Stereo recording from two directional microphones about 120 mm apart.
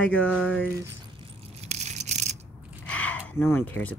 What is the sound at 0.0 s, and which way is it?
Speech, 10° left (ahead or behind).